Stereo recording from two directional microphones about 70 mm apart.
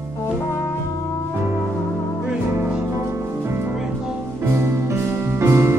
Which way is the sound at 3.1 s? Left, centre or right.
Right.